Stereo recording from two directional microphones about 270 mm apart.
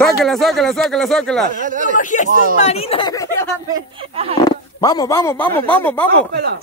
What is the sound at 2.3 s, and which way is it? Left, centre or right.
Speech, right.